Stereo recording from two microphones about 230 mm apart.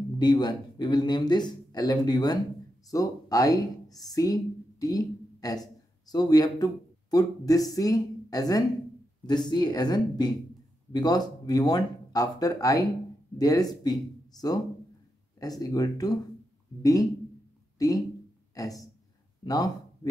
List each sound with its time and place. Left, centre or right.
0.2 s speech: centre
15.6 s speech: centre